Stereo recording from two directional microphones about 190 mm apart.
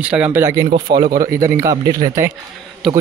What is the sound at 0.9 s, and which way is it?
Speech, 55° right (ahead or behind).